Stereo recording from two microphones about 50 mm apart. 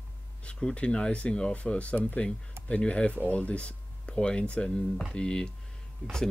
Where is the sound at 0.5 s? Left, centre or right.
Centre.